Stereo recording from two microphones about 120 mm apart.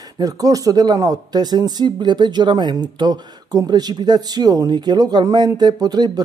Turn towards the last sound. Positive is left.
turn(degrees=-35)  # may be behind; listen again after turning